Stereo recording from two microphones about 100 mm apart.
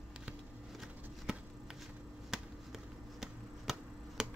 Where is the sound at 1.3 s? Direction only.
5° right (ahead or behind).